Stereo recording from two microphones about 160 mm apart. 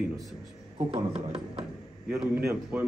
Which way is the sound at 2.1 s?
5° right (ahead or behind).